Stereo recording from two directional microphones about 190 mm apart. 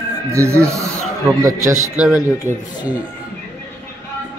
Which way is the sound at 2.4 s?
15° left (ahead or behind).